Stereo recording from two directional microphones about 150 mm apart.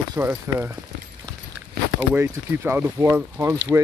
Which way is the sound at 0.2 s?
15° right (ahead or behind).